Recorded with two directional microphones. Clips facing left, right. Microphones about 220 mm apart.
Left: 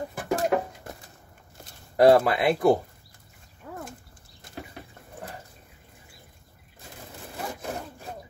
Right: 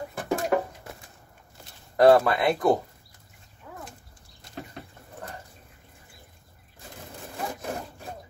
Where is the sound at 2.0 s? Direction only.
20° left (ahead or behind).